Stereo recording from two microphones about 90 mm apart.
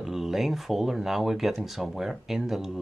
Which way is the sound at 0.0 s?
5° right (ahead or behind).